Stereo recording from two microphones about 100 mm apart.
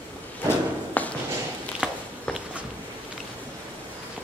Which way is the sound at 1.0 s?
15° left (ahead or behind).